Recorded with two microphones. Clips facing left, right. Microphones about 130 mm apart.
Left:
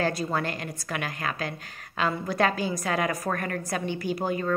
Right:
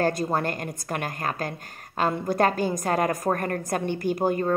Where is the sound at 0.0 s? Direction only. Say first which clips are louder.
Right 3 dB; 45° right (ahead or behind).